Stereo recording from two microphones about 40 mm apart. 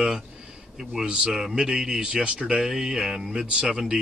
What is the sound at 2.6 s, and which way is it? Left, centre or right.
Speech, centre.